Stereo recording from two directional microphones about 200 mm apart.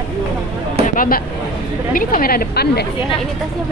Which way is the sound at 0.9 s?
45° left (ahead or behind).